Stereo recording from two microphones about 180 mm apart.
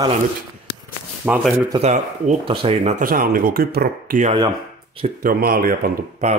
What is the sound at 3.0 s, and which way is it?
Speech, 50° right (ahead or behind).